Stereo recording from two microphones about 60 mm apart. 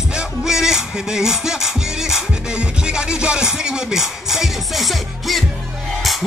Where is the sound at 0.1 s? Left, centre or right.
Centre.